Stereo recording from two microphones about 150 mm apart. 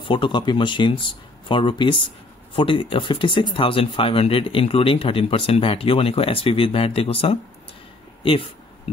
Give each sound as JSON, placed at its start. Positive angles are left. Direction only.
{"t": 0.0, "sound": "speech", "side_deg": 35}